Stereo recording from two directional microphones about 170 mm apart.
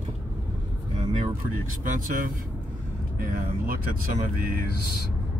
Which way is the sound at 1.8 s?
50° right (ahead or behind).